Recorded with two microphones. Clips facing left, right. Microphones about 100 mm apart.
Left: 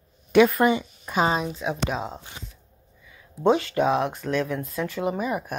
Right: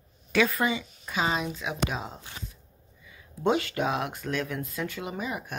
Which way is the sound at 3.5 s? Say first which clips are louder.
Left 6 dB; 5° right (ahead or behind).